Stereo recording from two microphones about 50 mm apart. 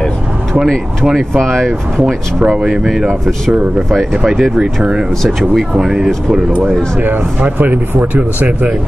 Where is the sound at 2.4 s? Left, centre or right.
Right.